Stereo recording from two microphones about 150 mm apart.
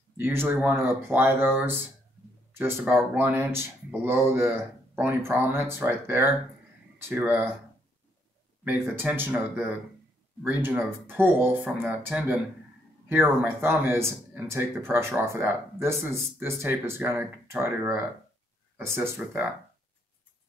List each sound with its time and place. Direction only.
0.2 s speech: 15° right (ahead or behind)
2.9 s speech: 15° right (ahead or behind)
8.6 s speech: 10° right (ahead or behind)